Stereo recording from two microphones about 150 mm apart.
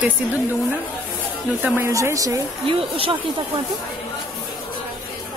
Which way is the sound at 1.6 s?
15° right (ahead or behind).